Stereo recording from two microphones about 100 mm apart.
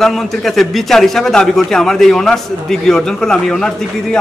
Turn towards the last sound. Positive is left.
turn(degrees=5)  # may be behind; listen again after turning